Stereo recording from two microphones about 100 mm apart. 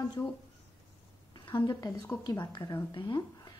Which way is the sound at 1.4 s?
50° left (ahead or behind).